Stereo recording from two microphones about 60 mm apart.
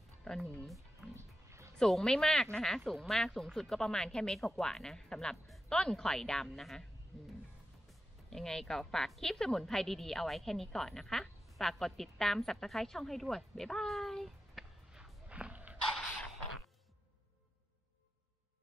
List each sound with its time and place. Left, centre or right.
0.3 s speech: centre
1.1 s music: right
1.8 s speech: centre
7.1 s music: centre
7.9 s speech: centre
14.9 s a sound: centre
15.2 s a sound: right